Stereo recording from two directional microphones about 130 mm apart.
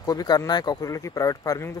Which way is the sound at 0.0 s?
30° left (ahead or behind).